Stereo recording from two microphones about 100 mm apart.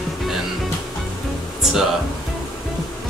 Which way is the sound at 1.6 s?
5° right (ahead or behind).